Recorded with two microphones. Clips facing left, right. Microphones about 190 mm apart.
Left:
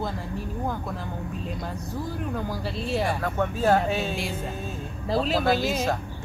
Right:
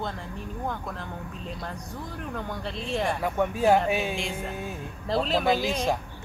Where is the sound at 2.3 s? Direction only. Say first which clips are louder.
Left 3 dB; 5° left (ahead or behind).